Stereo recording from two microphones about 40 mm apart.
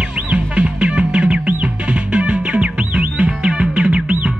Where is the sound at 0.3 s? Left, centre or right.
Right.